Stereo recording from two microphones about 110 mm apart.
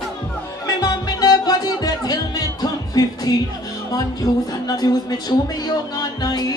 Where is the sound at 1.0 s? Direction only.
35° left (ahead or behind).